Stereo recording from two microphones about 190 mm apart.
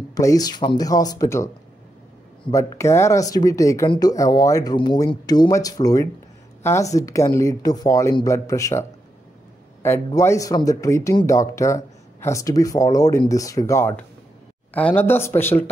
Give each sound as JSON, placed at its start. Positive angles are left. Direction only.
{"t": 0.1, "sound": "speech", "side_deg": 20}
{"t": 2.5, "sound": "speech", "side_deg": 15}
{"t": 9.8, "sound": "speech", "side_deg": 15}